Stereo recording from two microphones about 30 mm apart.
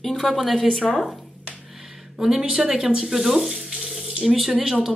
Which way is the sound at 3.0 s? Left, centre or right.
Centre.